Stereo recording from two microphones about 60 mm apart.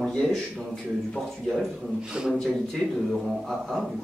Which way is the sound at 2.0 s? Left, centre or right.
Centre.